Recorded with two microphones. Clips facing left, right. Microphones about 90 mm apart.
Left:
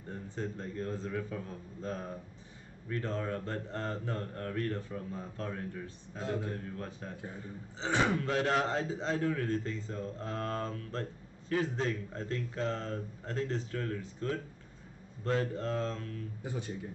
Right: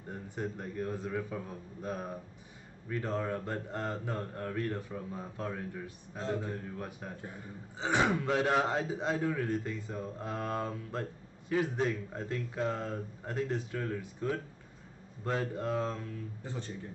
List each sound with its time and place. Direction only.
0.1 s a man's voice: 15° right (ahead or behind)
16.4 s speech: 10° left (ahead or behind)